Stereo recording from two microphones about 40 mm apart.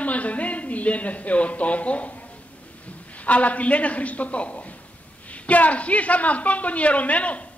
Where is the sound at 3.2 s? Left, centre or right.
Left.